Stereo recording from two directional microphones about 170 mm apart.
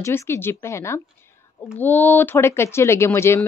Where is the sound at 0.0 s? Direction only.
15° left (ahead or behind).